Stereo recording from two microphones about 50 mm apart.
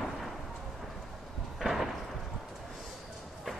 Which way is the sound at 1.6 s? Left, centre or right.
Centre.